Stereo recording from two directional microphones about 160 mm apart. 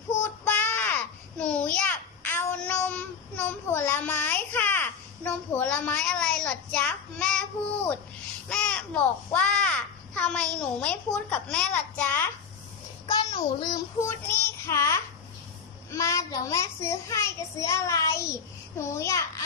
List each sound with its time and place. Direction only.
0.2 s child singing: 10° left (ahead or behind)
8.5 s a child's voice: 5° left (ahead or behind)
13.0 s child singing: 25° left (ahead or behind)
14.4 s a sound: 15° left (ahead or behind)
15.9 s a child's voice: 20° left (ahead or behind)